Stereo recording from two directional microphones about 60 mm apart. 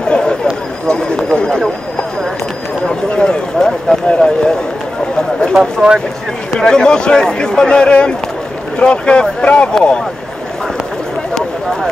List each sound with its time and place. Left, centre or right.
0.1 s a sound: centre
0.8 s speech: centre
2.9 s speech: centre
5.5 s speech: centre
6.5 s speech: centre